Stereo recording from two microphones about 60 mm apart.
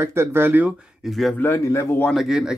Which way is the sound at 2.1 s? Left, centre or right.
Centre.